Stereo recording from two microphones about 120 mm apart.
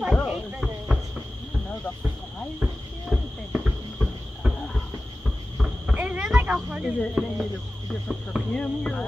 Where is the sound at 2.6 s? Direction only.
10° right (ahead or behind).